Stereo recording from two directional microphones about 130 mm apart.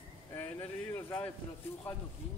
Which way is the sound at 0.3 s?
15° left (ahead or behind).